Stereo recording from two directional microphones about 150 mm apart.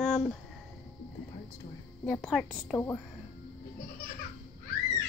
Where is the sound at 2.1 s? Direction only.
Centre (ahead or behind).